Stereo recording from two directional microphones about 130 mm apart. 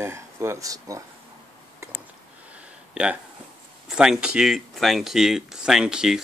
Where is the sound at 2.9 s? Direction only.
10° right (ahead or behind).